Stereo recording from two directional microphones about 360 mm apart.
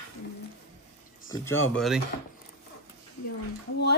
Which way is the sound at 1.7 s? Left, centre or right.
Centre.